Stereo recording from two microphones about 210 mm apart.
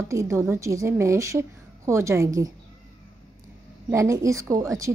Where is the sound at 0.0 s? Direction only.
15° right (ahead or behind).